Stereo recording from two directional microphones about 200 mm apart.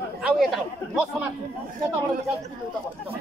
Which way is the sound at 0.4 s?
Centre (ahead or behind).